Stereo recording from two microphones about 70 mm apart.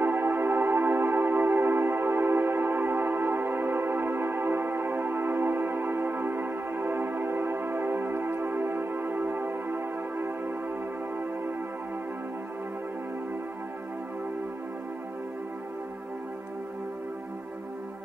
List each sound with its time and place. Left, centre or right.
0.0 s music: right